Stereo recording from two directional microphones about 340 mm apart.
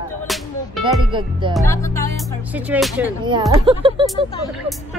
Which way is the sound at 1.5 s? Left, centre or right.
Centre.